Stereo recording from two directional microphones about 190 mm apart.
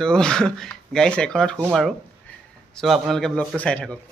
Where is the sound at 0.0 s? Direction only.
5° left (ahead or behind).